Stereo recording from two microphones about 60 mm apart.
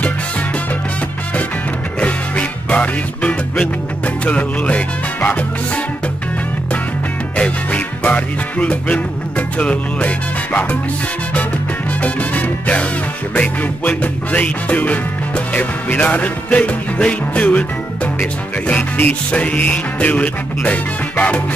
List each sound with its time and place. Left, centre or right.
2.0 s music: left
7.3 s music: left
9.6 s speech: left
12.0 s music: left